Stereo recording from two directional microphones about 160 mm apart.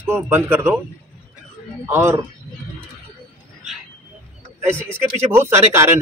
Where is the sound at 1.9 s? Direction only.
15° right (ahead or behind).